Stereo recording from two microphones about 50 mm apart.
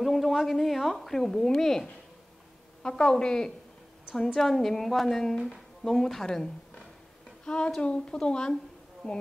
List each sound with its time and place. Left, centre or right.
0.0 s a woman's voice: centre